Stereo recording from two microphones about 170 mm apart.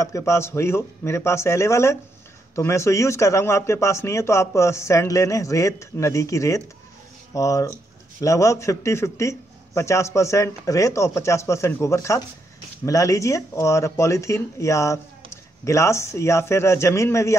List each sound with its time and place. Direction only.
0.0 s speech: 15° left (ahead or behind)